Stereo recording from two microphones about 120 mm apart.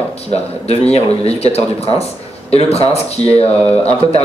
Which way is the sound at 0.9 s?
60° left (ahead or behind).